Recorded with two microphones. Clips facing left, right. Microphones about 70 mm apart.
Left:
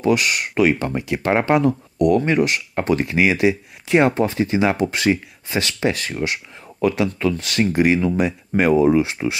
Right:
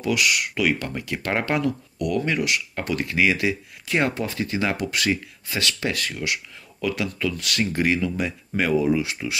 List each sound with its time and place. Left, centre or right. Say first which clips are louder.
0.0 s speech: left 4 dB; left